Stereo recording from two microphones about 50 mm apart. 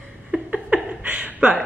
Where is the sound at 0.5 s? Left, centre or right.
Right.